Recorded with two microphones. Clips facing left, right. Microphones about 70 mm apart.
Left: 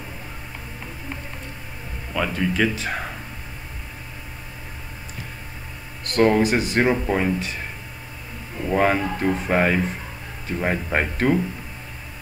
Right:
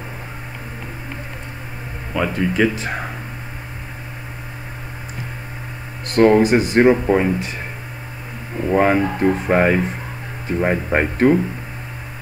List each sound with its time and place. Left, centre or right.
2.1 s speech: centre
6.1 s speech: right
8.5 s speech: centre